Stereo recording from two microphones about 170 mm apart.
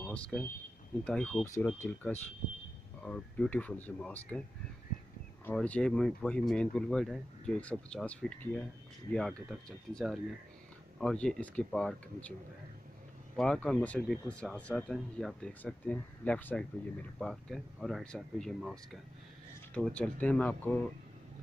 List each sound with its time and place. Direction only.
0.0 s speech: 5° left (ahead or behind)
1.4 s speech: 20° left (ahead or behind)
5.4 s speech: 5° left (ahead or behind)
13.4 s speech: 5° left (ahead or behind)